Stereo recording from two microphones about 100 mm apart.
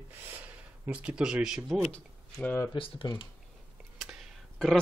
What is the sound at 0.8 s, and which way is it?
Speech, 10° right (ahead or behind).